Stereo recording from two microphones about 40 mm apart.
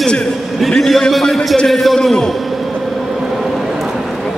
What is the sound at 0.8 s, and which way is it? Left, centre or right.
A man's voice, centre.